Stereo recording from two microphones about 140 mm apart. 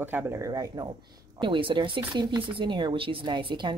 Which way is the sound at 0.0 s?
15° right (ahead or behind).